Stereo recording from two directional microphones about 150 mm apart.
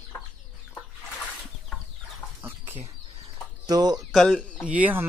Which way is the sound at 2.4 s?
15° right (ahead or behind).